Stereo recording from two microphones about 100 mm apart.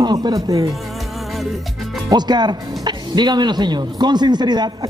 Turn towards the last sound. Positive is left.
turn(degrees=-45)  # may be behind; listen again after turning